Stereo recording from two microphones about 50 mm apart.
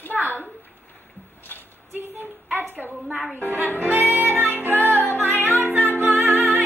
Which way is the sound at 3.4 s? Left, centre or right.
Right.